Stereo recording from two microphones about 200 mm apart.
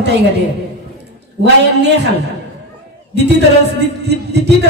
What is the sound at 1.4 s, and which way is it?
Speech, 55° right (ahead or behind).